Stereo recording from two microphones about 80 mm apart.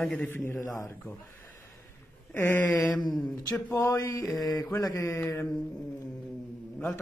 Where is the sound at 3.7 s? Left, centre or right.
Left.